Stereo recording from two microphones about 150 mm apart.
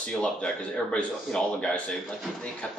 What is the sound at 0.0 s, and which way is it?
Speech, 5° left (ahead or behind).